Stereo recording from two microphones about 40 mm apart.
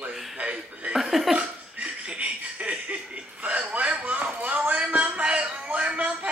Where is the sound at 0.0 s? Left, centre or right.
Right.